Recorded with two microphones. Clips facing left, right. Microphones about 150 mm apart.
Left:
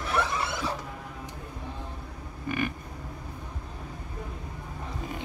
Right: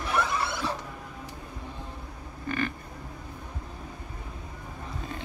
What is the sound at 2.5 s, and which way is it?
Livestock, 15° left (ahead or behind).